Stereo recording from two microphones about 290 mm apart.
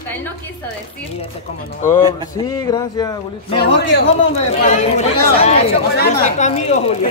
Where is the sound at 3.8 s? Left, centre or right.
Left.